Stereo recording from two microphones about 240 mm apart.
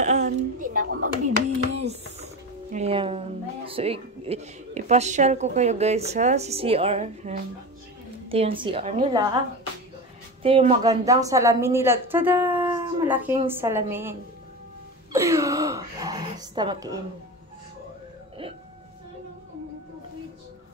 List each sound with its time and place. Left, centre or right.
0.0 s a sound: right
2.7 s a woman's voice: right
10.4 s speech: right
15.1 s speech: centre